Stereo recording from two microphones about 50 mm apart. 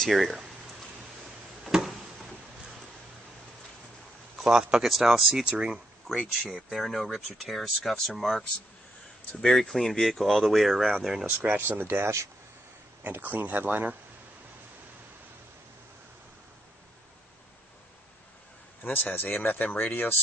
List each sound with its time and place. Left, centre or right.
0.1 s speech: centre
1.6 s a sound: centre
4.4 s speech: centre
6.7 s speech: centre
11.2 s speech: right
11.6 s speech: right
18.8 s speech: left